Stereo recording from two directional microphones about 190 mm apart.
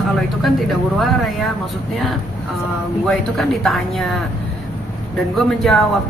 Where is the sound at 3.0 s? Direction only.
Centre (ahead or behind).